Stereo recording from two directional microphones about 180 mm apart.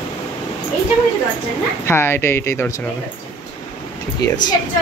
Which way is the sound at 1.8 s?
15° left (ahead or behind).